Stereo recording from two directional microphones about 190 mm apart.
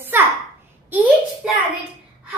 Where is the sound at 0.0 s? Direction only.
10° right (ahead or behind).